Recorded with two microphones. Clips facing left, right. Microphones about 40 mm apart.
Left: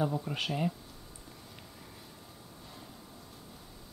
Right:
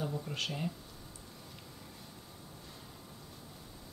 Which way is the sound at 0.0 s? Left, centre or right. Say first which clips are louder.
Left 5 dB; centre.